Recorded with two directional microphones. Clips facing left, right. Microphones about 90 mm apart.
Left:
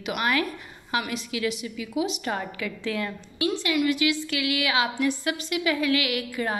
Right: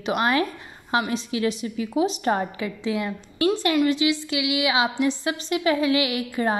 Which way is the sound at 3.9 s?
20° right (ahead or behind).